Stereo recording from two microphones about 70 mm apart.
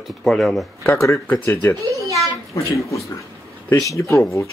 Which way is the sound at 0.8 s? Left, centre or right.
Left.